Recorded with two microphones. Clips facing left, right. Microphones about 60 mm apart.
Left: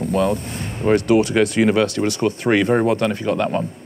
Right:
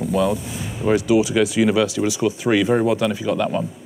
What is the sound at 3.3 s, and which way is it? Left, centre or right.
Speech, centre.